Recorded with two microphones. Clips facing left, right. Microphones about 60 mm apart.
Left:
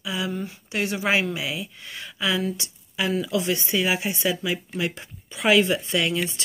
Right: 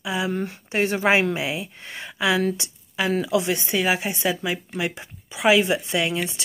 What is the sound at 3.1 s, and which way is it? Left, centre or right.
Speech, right.